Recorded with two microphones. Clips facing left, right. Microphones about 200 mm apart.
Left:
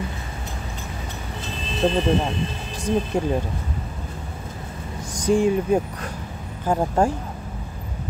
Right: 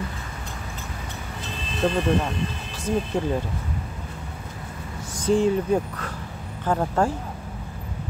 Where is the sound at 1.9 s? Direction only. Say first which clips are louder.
Left 2 dB; 25° left (ahead or behind).